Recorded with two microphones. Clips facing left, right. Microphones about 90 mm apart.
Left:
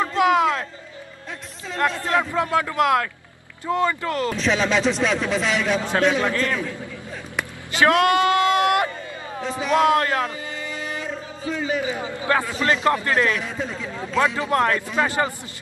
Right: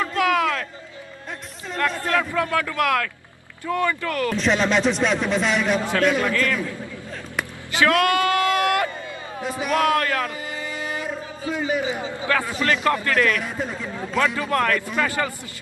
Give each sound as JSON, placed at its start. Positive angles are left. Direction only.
{"t": 0.0, "sound": "a sound", "side_deg": 25}
{"t": 1.8, "sound": "a man's voice", "side_deg": 25}
{"t": 4.4, "sound": "speech", "side_deg": 0}
{"t": 5.8, "sound": "a man's voice", "side_deg": 20}
{"t": 7.8, "sound": "speech", "side_deg": 25}
{"t": 9.4, "sound": "a man's voice", "side_deg": -10}
{"t": 9.7, "sound": "a man's voice", "side_deg": 25}
{"t": 10.7, "sound": "music", "side_deg": -20}
{"t": 11.5, "sound": "a man's voice", "side_deg": -15}
{"t": 12.5, "sound": "a man's voice", "side_deg": 25}
{"t": 13.4, "sound": "a man's voice", "side_deg": -10}
{"t": 14.1, "sound": "a man's voice", "side_deg": 20}